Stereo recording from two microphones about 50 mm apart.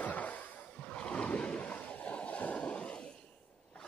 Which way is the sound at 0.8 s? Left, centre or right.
Left.